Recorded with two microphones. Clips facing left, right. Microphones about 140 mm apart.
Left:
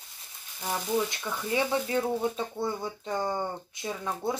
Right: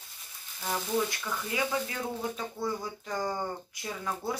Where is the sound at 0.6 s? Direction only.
15° left (ahead or behind).